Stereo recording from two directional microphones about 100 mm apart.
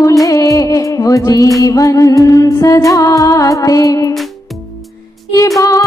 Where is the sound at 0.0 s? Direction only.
35° left (ahead or behind).